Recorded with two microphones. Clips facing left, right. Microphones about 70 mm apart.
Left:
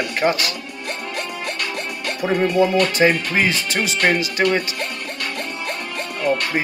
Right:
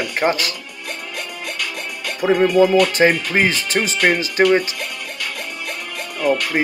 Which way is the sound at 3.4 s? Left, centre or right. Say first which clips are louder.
Right 2 dB; right.